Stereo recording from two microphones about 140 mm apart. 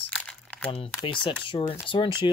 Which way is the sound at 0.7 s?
45° left (ahead or behind).